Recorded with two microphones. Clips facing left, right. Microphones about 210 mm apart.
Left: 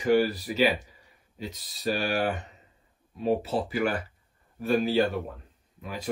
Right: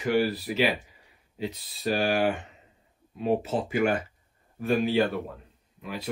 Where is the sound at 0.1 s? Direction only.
40° left (ahead or behind).